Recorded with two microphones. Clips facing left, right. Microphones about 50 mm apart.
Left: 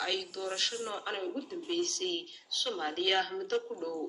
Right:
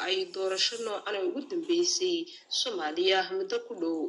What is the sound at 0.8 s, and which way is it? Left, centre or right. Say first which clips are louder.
Speech: right 5 dB; right.